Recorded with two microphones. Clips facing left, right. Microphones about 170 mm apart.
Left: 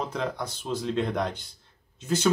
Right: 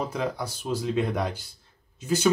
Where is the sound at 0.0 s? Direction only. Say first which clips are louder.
Right 1 dB; 10° right (ahead or behind).